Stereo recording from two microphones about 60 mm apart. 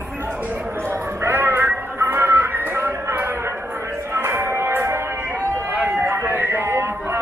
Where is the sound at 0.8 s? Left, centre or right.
Right.